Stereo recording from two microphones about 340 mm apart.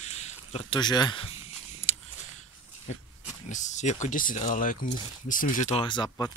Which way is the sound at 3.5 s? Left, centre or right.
Left.